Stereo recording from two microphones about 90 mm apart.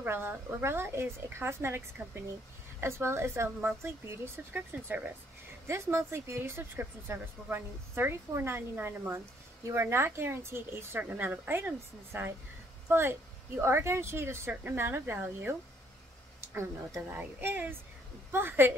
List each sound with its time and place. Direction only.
0.0 s a woman's voice: 25° right (ahead or behind)
5.7 s a woman's voice: 30° right (ahead or behind)